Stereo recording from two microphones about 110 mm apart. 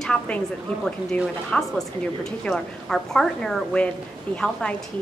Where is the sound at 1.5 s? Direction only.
5° left (ahead or behind).